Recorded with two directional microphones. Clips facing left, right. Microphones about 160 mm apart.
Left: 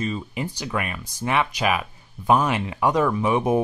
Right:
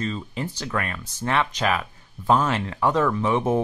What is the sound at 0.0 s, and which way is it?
Speech, 10° left (ahead or behind).